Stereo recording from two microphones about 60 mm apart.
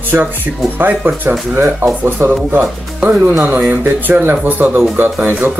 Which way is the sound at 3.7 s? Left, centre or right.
Right.